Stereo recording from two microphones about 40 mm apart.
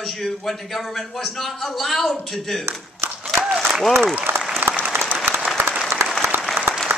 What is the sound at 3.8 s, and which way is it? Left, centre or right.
Speech, centre.